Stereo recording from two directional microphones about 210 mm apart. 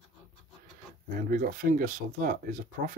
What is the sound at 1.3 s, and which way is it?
Speech, 40° right (ahead or behind).